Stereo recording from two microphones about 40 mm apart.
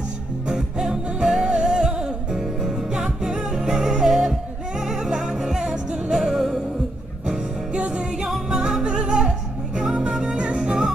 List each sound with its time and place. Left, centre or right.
0.5 s music: centre
7.7 s music: right